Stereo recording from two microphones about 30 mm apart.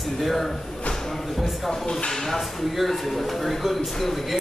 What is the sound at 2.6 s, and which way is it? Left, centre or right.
Speech, centre.